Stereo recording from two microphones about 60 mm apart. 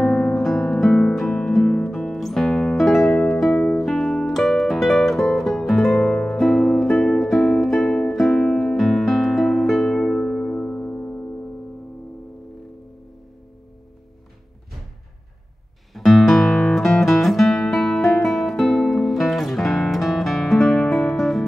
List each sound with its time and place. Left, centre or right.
0.2 s guitar: centre
1.1 s music: centre
10.7 s music: left
15.9 s guitar: centre